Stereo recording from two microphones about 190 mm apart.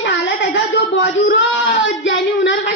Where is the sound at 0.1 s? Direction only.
75° left (ahead or behind).